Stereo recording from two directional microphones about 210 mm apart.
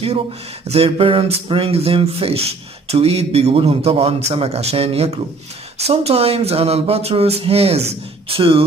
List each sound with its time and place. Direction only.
0.7 s speech: 25° right (ahead or behind)